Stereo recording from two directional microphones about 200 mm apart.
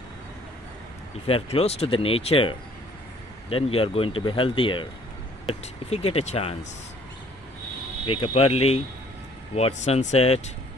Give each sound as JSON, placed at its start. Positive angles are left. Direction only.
{"t": 1.2, "sound": "speech", "side_deg": 30}
{"t": 8.2, "sound": "speech", "side_deg": 30}